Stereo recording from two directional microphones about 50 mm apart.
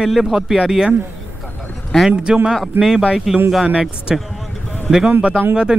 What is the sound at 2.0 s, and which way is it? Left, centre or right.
Speech, centre.